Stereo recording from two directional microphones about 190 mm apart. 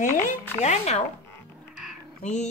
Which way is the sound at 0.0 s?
40° left (ahead or behind).